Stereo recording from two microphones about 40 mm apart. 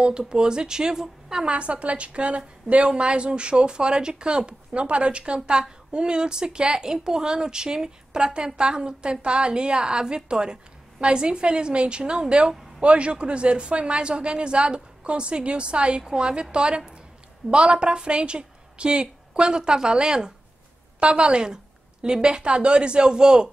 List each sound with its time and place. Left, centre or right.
0.0 s a woman's voice: right
1.5 s a woman's voice: right